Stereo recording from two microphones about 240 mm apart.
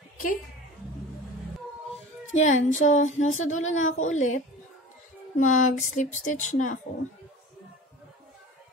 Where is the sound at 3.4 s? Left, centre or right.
Left.